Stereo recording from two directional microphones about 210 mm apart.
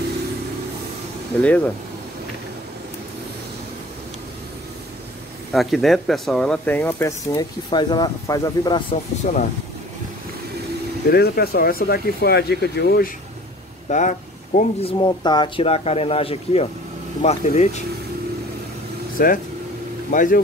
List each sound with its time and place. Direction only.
1.4 s speech: 5° left (ahead or behind)
5.5 s speech: centre (ahead or behind); by 8.8 s 20° left (ahead or behind)
9.2 s speech: 40° left (ahead or behind)
11.1 s speech: 50° left (ahead or behind)
13.8 s speech: 35° left (ahead or behind)
15.0 s speech: 20° left (ahead or behind)
19.1 s speech: 40° left (ahead or behind)